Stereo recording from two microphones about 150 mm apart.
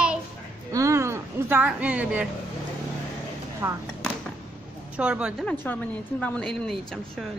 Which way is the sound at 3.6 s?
15° right (ahead or behind).